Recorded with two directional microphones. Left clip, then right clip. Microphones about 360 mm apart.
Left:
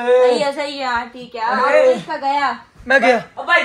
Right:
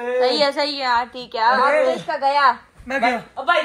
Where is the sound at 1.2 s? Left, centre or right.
Right.